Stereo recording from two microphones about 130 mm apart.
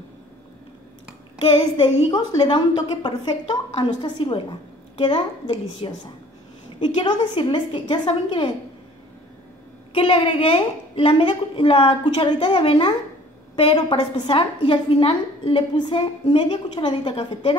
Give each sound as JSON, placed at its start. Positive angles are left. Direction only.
{"t": 1.5, "sound": "a woman's voice", "side_deg": 30}
{"t": 9.9, "sound": "a woman's voice", "side_deg": 45}